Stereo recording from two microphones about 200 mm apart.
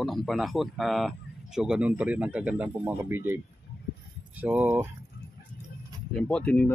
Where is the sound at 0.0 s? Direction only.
Centre (ahead or behind).